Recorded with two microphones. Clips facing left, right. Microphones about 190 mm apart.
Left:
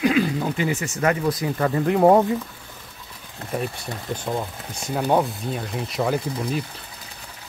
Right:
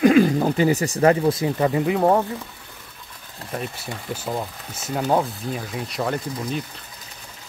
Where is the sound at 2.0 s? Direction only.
15° left (ahead or behind).